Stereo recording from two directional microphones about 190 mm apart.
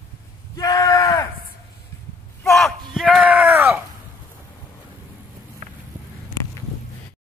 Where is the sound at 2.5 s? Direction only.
Centre (ahead or behind).